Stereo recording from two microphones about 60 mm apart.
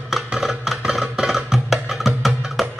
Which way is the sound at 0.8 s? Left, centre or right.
Centre.